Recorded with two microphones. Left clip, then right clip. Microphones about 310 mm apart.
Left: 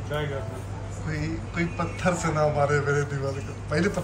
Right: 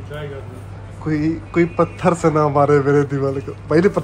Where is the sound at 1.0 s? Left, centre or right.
Centre.